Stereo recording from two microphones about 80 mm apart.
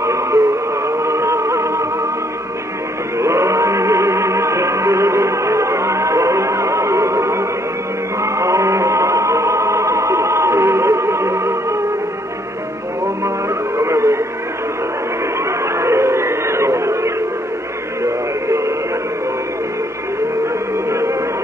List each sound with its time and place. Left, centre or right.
0.0 s music: right
3.2 s music: right
13.7 s music: right
15.6 s a sound: right
20.7 s music: right